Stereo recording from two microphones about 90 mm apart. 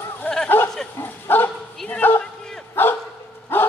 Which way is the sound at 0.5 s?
25° left (ahead or behind).